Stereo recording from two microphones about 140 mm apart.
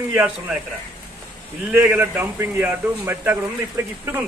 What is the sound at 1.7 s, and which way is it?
A man's voice, 15° right (ahead or behind).